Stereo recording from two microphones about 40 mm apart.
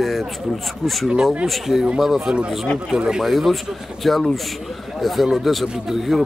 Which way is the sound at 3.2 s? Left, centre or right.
Centre.